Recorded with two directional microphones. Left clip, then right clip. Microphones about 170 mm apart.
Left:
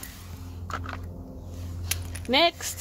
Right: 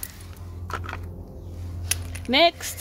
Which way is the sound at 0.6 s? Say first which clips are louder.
Right 2 dB; 45° right (ahead or behind).